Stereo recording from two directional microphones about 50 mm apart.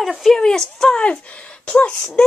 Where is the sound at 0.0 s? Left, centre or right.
Centre.